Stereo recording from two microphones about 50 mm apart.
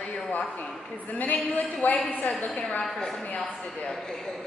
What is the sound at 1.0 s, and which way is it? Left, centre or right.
A woman's voice, left.